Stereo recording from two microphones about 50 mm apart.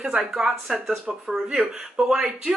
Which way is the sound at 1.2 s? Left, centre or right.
Centre.